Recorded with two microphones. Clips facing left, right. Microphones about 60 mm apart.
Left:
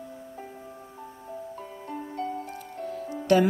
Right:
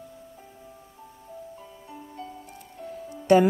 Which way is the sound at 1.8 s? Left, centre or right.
Left.